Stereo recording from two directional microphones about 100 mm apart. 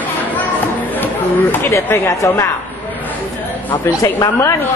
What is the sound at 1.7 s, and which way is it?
Speech, 30° left (ahead or behind).